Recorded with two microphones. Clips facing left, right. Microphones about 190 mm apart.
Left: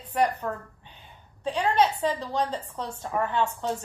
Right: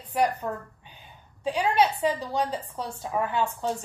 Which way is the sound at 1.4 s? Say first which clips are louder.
Even; 10° right (ahead or behind).